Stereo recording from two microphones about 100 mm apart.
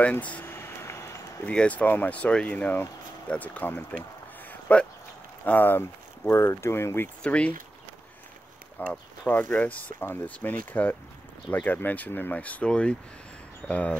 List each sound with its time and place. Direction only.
0.0 s a sound: 15° left (ahead or behind)
1.5 s speech: 10° left (ahead or behind)
4.5 s a sound: 15° left (ahead or behind)
5.4 s speech: 20° left (ahead or behind)
7.2 s speech: 15° left (ahead or behind)
8.7 s speech: 10° left (ahead or behind)